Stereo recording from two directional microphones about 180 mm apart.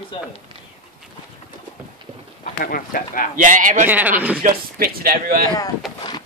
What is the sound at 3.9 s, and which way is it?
Speech, 10° right (ahead or behind).